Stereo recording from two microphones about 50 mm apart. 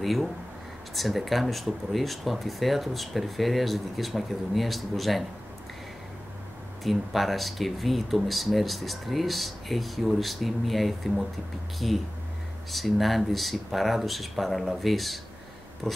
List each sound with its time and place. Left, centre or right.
0.0 s speech: centre
6.8 s speech: centre
15.8 s a sound: centre